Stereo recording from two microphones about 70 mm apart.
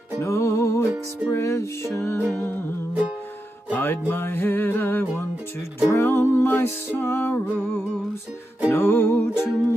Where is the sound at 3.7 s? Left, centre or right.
Left.